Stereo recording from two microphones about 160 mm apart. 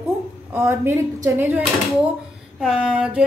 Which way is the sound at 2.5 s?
5° right (ahead or behind).